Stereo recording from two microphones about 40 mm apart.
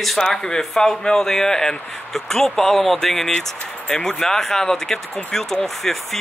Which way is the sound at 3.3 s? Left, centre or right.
Left.